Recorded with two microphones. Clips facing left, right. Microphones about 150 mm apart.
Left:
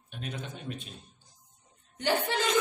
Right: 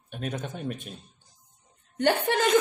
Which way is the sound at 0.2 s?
45° right (ahead or behind).